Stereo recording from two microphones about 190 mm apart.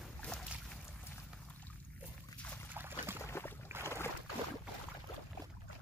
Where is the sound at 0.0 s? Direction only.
5° left (ahead or behind).